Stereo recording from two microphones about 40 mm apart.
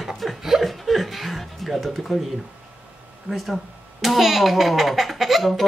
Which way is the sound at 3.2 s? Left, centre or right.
Centre.